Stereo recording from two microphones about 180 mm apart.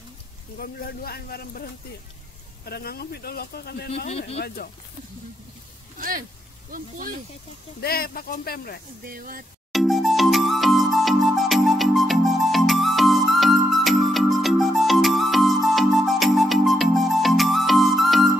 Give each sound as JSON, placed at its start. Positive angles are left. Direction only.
{"t": 0.6, "sound": "speech", "side_deg": 55}
{"t": 4.1, "sound": "speech", "side_deg": 35}
{"t": 5.9, "sound": "speech", "side_deg": -50}
{"t": 7.8, "sound": "speech", "side_deg": 55}
{"t": 9.0, "sound": "speech", "side_deg": -55}
{"t": 9.7, "sound": "music", "side_deg": 0}